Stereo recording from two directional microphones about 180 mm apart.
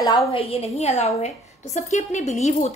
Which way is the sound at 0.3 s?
35° left (ahead or behind).